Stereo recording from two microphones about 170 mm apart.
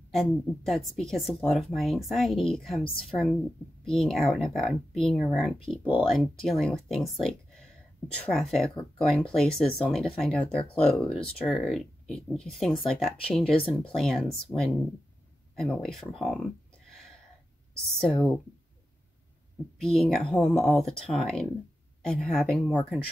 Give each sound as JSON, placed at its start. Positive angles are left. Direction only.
{"t": 0.1, "sound": "speech", "side_deg": 0}
{"t": 18.0, "sound": "speech", "side_deg": 0}
{"t": 19.8, "sound": "speech", "side_deg": 0}